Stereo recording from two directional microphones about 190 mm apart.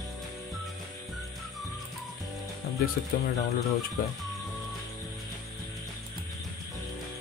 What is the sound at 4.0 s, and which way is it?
Speech, 50° left (ahead or behind).